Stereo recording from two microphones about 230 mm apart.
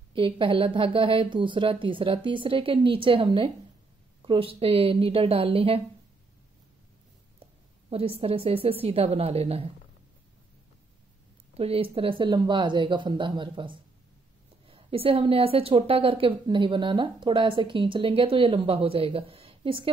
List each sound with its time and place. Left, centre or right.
0.1 s a woman's voice: right
7.9 s a woman's voice: right
11.5 s a woman's voice: right